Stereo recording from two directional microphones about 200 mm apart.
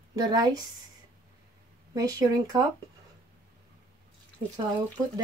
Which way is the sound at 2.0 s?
15° right (ahead or behind).